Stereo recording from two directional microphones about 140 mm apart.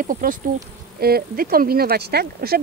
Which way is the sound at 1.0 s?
90° right.